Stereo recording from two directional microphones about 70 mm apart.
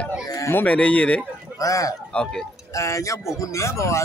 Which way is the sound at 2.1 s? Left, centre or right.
Centre.